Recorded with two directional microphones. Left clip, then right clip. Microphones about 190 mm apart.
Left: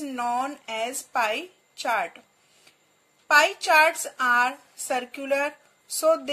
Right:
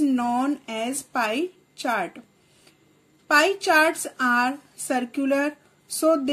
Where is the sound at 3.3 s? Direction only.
Centre (ahead or behind).